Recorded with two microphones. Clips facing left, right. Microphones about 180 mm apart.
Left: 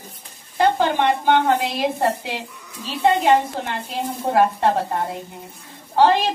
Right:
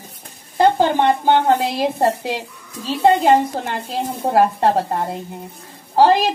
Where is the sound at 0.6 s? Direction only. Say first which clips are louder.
Right 3 dB; 35° right (ahead or behind).